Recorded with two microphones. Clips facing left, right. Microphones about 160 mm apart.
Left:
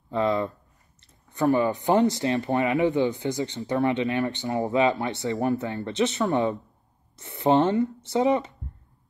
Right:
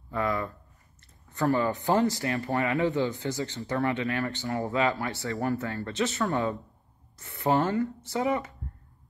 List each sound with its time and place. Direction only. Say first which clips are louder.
0.1 s speech: left 5 dB; 25° left (ahead or behind)